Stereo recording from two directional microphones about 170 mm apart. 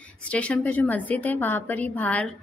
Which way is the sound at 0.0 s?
5° left (ahead or behind).